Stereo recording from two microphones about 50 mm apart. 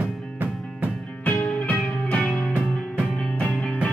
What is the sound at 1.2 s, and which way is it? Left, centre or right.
Music, left.